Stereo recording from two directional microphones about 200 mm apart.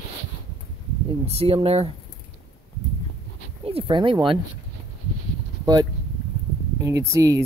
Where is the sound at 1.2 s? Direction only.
30° right (ahead or behind).